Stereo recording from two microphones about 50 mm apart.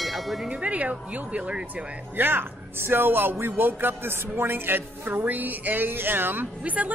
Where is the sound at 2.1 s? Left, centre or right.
Right.